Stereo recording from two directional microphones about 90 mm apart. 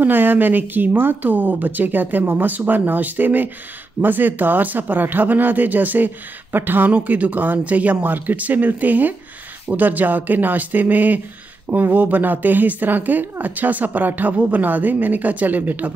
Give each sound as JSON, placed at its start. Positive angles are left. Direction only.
{"t": 0.0, "sound": "speech", "side_deg": -20}